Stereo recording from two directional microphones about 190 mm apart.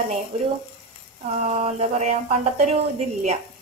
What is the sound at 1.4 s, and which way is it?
Speech, 30° right (ahead or behind).